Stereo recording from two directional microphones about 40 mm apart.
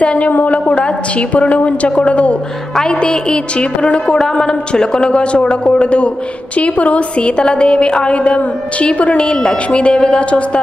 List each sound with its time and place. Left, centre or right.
0.0 s a sound: left
0.5 s a woman's voice: left
2.8 s a woman's voice: left